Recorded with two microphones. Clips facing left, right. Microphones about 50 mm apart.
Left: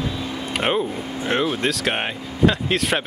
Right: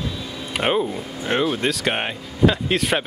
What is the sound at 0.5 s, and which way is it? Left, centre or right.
Speech, centre.